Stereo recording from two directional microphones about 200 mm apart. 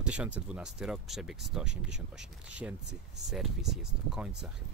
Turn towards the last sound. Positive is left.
turn(degrees=0)  # may be behind; listen again after turning